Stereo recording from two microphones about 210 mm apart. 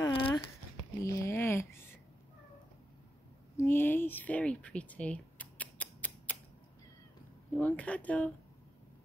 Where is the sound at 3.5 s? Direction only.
10° left (ahead or behind).